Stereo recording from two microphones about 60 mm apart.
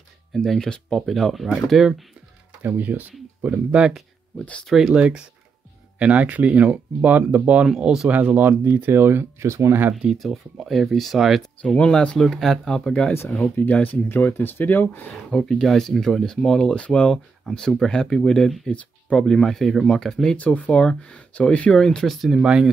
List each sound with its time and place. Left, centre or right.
0.3 s speech: centre
2.6 s speech: right
4.4 s speech: centre
4.6 s speech: centre
4.9 s speech: centre
7.6 s speech: centre
8.1 s speech: right
10.0 s speech: centre
11.6 s speech: centre
13.6 s speech: left
14.0 s speech: left
15.2 s speech: centre
20.3 s speech: left
22.3 s speech: centre